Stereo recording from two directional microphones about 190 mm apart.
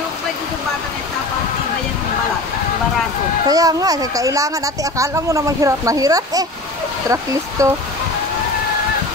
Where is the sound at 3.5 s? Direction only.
20° right (ahead or behind).